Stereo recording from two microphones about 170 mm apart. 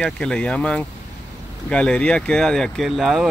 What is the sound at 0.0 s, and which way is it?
Speech, 5° left (ahead or behind).